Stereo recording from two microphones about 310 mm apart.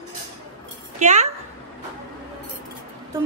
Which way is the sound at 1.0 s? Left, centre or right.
Right.